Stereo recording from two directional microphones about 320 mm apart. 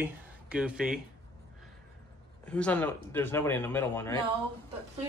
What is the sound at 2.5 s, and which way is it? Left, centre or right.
Speech, centre.